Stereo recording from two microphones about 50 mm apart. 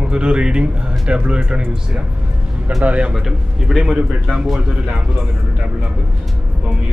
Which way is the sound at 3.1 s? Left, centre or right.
Centre.